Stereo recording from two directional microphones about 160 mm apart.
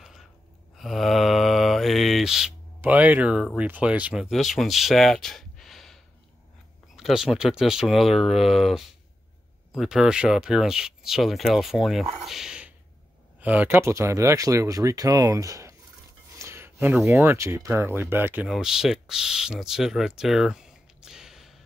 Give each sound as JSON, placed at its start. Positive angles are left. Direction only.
{"t": 0.7, "sound": "mantra", "side_deg": 0}
{"t": 3.5, "sound": "speech", "side_deg": -10}
{"t": 7.0, "sound": "speech", "side_deg": 0}
{"t": 12.3, "sound": "a sound", "side_deg": -5}
{"t": 13.4, "sound": "speech", "side_deg": -10}